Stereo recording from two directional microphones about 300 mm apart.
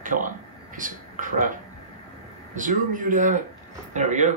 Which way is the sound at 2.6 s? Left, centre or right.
Right.